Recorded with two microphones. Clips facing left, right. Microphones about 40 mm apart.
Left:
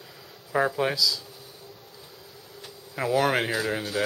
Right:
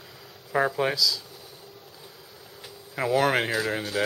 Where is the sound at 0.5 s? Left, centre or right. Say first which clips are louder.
Even; centre.